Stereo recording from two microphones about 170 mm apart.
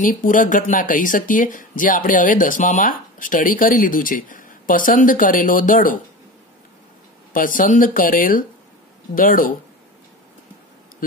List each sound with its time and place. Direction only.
0.0 s speech: 55° left (ahead or behind)
7.3 s speech: 55° left (ahead or behind)